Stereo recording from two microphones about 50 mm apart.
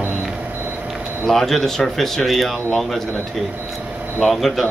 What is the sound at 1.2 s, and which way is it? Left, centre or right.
Speech, centre.